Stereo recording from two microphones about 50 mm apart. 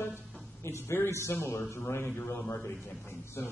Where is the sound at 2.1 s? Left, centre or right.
Left.